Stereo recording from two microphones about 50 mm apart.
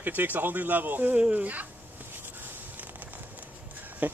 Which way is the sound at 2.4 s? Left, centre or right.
Right.